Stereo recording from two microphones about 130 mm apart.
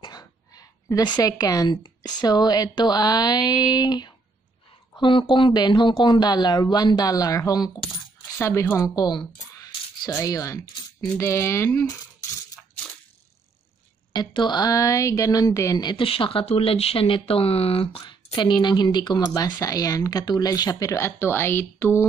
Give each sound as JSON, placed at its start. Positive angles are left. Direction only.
{"t": 0.0, "sound": "a sound", "side_deg": 30}
{"t": 2.0, "sound": "a woman's voice", "side_deg": 30}
{"t": 8.4, "sound": "speech", "side_deg": 20}
{"t": 9.6, "sound": "coin", "side_deg": 25}
{"t": 11.1, "sound": "speech", "side_deg": 20}
{"t": 14.1, "sound": "a woman's voice", "side_deg": 35}
{"t": 18.0, "sound": "speech", "side_deg": 35}